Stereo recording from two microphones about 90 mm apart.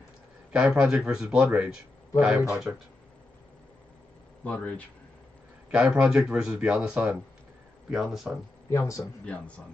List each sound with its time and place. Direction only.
0.5 s speech: 10° right (ahead or behind)
4.5 s a man's voice: 15° left (ahead or behind)
5.7 s speech: 10° right (ahead or behind)
8.6 s speech: 35° left (ahead or behind)